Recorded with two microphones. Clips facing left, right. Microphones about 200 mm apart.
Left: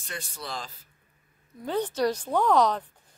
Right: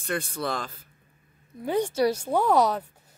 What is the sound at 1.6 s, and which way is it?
Speech, 10° right (ahead or behind).